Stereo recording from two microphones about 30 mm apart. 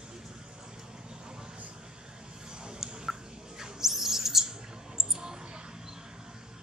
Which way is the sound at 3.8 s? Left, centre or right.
Centre.